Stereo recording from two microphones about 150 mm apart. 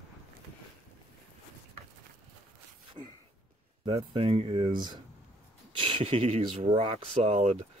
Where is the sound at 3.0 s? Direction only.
35° right (ahead or behind).